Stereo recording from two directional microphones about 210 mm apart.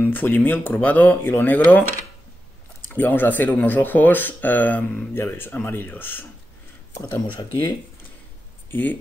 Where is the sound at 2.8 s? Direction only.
10° left (ahead or behind).